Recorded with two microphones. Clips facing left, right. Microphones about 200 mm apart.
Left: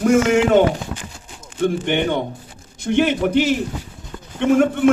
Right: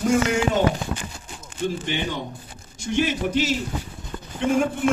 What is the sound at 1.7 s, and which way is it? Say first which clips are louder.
A man's voice: left 8 dB; 60° left (ahead or behind).